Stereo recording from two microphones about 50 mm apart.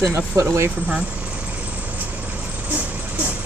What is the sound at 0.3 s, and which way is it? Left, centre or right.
Speech, right.